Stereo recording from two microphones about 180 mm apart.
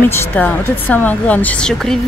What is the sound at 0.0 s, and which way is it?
Speech, 10° left (ahead or behind).